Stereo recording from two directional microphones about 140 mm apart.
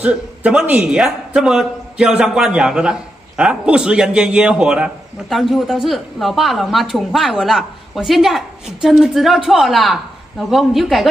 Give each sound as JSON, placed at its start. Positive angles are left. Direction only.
{"t": 0.0, "sound": "a man's voice", "side_deg": -10}